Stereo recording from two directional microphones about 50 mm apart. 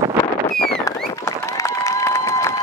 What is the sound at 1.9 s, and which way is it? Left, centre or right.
Applause, left.